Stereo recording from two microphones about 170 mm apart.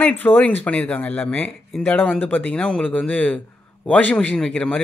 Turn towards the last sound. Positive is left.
turn(degrees=5)  # may be behind; listen again after turning